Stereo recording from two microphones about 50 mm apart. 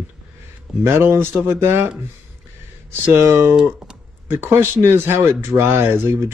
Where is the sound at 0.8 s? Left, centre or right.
Right.